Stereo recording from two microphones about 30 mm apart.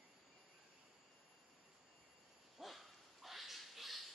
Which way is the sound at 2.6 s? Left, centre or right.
Centre.